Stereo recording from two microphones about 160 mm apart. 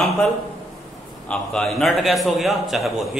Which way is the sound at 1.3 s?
5° left (ahead or behind).